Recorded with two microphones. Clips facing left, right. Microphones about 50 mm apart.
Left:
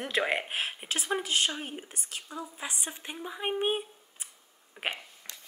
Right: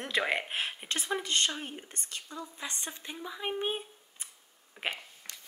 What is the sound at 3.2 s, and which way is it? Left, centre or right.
Speech, left.